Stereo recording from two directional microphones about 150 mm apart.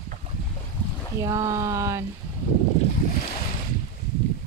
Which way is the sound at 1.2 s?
20° right (ahead or behind).